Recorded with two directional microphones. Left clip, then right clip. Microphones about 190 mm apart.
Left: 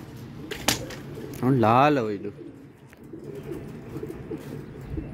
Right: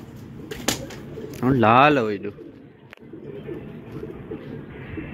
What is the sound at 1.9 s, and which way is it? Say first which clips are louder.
Speech: right 4 dB; 5° left (ahead or behind).